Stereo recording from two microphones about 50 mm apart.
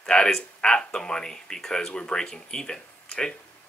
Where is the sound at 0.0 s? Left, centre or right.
Centre.